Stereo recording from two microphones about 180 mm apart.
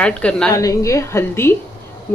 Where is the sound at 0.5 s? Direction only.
20° left (ahead or behind).